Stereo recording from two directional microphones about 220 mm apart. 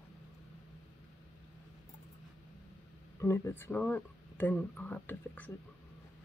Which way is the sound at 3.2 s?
10° left (ahead or behind).